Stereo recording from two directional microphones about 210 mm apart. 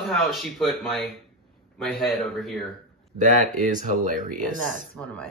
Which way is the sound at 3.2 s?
40° right (ahead or behind).